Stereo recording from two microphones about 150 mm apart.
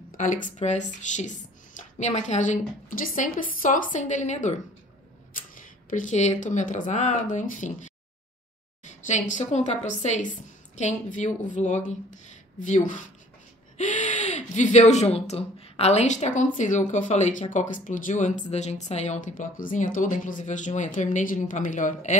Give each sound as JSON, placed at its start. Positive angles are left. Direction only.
{"t": 0.2, "sound": "a woman's voice", "side_deg": 60}